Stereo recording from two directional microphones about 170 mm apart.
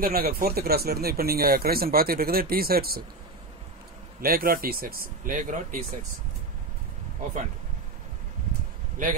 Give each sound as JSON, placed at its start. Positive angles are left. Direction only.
{"t": 0.0, "sound": "speech", "side_deg": -60}
{"t": 4.2, "sound": "speech", "side_deg": -60}
{"t": 9.0, "sound": "a man's voice", "side_deg": -50}